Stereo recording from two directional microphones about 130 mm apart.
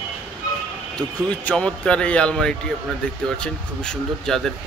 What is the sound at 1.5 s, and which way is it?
A man's voice, 10° left (ahead or behind).